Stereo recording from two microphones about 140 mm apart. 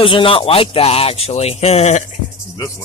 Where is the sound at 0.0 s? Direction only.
40° left (ahead or behind).